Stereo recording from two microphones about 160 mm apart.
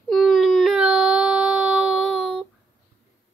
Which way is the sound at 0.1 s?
Centre (ahead or behind).